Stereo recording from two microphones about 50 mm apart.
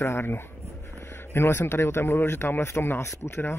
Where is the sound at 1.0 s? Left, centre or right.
Left.